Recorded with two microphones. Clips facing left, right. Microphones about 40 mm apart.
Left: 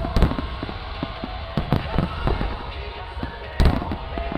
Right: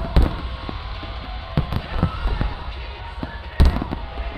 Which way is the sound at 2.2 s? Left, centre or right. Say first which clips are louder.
Left 3 dB; centre.